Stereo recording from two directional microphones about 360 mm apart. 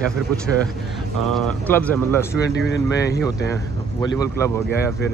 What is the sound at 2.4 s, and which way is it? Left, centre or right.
Speech, left.